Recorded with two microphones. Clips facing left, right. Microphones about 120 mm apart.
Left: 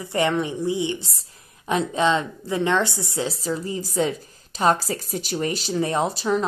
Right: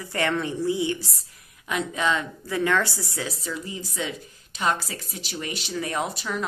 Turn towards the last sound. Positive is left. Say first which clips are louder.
# left 6 dB
turn(degrees=30)  # may be behind; listen again after turning